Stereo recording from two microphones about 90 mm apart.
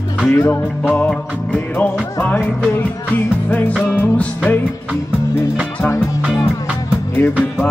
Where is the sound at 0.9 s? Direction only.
10° left (ahead or behind).